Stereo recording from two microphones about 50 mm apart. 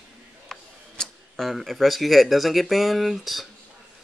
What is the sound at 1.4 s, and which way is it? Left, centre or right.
Speech, centre.